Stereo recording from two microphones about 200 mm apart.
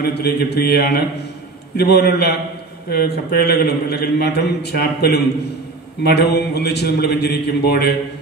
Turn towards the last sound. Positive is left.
turn(degrees=55)  # may be behind; listen again after turning